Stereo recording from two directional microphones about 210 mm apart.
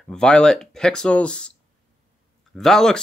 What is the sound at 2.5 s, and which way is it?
Speech, centre (ahead or behind).